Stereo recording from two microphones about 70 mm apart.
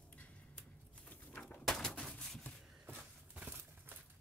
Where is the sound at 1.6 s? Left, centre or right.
Centre.